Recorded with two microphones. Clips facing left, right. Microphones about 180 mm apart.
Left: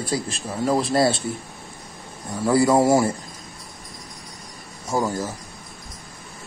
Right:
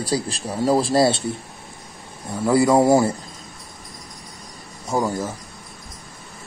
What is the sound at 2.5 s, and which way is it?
Speech, 20° right (ahead or behind).